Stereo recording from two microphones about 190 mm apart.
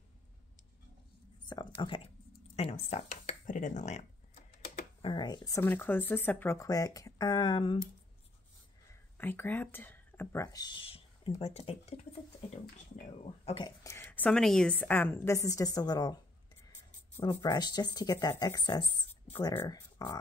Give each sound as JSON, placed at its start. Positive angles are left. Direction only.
{"t": 1.4, "sound": "a sound", "side_deg": 20}
{"t": 2.5, "sound": "speech", "side_deg": 35}
{"t": 5.0, "sound": "speech", "side_deg": 25}
{"t": 9.2, "sound": "speech", "side_deg": 10}
{"t": 13.7, "sound": "speech", "side_deg": 15}
{"t": 17.2, "sound": "speech", "side_deg": 20}
{"t": 19.2, "sound": "speech", "side_deg": 10}